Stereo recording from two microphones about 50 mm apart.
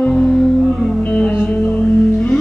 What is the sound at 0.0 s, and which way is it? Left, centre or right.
Music, centre.